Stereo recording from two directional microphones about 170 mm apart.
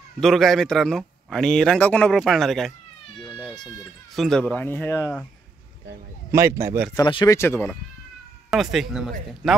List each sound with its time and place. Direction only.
0.2 s speech: centre (ahead or behind)
3.3 s cat: 5° right (ahead or behind)
3.5 s speech: 20° left (ahead or behind)
4.1 s speech: centre (ahead or behind)
6.3 s speech: 15° right (ahead or behind)
7.1 s speech: 30° left (ahead or behind)
7.3 s speech: 15° left (ahead or behind)
8.5 s speech: centre (ahead or behind)